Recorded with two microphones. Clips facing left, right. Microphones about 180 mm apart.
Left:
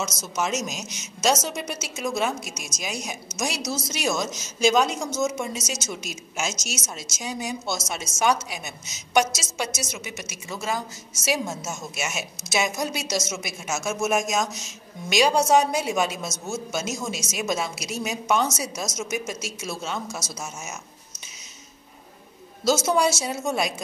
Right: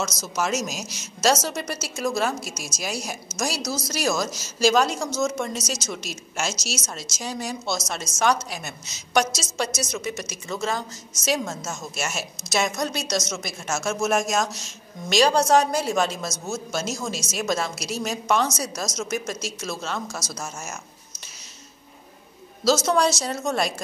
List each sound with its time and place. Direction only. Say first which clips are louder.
0.0 s a woman's voice: right 1 dB; centre (ahead or behind)
6.5 s a woman's voice: right 2 dB; 45° left (ahead or behind)
6.8 s a woman's voice: right 1 dB; centre (ahead or behind)
22.8 s a woman's voice: right 1 dB; 5° left (ahead or behind)